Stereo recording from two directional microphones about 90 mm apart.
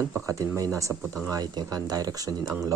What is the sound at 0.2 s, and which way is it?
Speech, 35° right (ahead or behind).